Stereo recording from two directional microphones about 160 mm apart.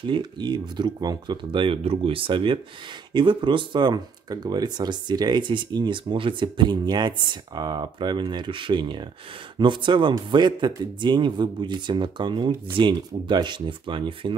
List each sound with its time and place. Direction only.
0.0 s speech: 30° right (ahead or behind)